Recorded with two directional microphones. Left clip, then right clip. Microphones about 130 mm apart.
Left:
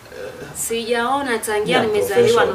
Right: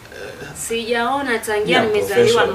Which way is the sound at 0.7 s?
15° left (ahead or behind).